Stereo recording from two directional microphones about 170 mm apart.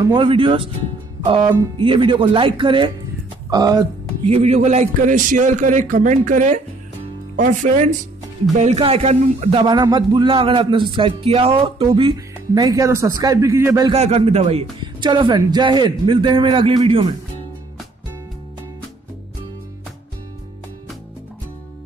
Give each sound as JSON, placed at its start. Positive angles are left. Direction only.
{"t": 0.0, "sound": "speech", "side_deg": -25}
{"t": 1.2, "sound": "music", "side_deg": -30}
{"t": 1.8, "sound": "speech", "side_deg": -30}
{"t": 4.3, "sound": "a man's voice", "side_deg": -40}
{"t": 13.9, "sound": "speech", "side_deg": -40}